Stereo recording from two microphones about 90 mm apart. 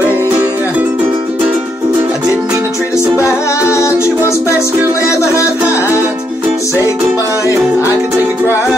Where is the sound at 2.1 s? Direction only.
10° right (ahead or behind).